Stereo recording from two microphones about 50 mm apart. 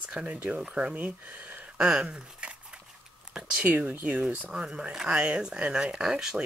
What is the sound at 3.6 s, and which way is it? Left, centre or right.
Speech, right.